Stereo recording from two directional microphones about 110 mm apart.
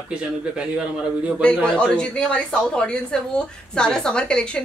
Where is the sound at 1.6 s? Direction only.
10° left (ahead or behind).